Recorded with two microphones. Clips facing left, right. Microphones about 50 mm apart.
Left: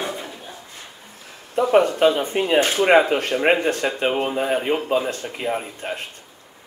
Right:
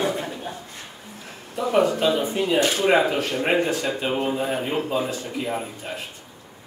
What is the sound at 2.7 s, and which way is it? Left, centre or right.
Speech, left.